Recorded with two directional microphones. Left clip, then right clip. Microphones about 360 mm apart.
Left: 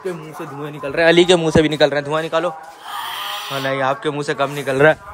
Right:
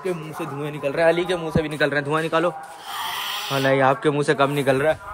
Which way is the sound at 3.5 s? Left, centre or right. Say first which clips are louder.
Right 2 dB; centre.